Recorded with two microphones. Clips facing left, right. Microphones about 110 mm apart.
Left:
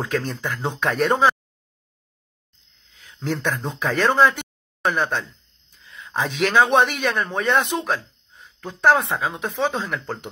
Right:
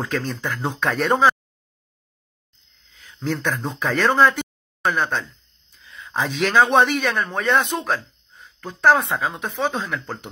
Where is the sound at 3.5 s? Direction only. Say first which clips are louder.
Even; 10° right (ahead or behind).